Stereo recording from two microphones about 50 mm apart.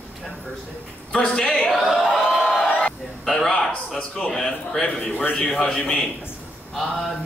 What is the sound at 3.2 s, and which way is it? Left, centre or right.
Speech, centre.